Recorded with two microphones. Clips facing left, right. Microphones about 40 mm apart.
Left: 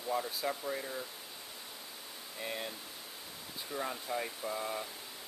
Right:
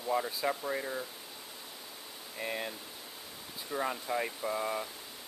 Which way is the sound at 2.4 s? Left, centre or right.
Centre.